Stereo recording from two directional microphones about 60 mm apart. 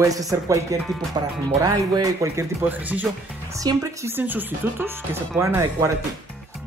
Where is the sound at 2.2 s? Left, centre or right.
Right.